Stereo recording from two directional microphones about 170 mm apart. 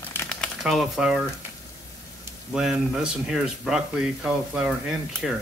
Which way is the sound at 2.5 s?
5° right (ahead or behind).